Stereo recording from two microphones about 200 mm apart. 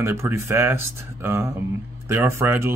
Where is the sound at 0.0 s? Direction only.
15° right (ahead or behind).